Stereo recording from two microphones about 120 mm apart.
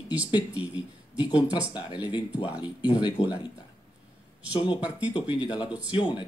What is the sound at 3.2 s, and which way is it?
Speech, 60° left (ahead or behind).